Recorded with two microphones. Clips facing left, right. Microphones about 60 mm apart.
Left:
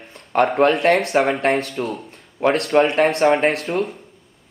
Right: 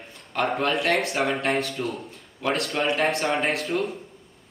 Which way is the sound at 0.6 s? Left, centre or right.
Left.